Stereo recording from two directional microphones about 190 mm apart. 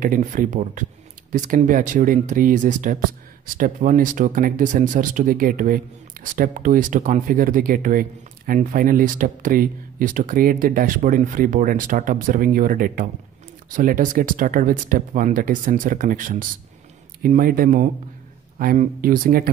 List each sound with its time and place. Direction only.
0.0 s speech: 45° right (ahead or behind)